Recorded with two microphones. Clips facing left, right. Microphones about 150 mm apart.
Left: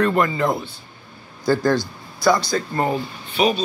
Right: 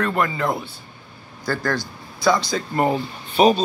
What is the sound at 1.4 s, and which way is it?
Speech, 15° left (ahead or behind).